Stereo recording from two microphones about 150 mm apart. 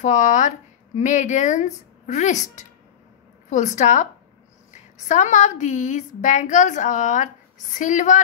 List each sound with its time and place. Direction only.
0.0 s a woman's voice: 55° left (ahead or behind)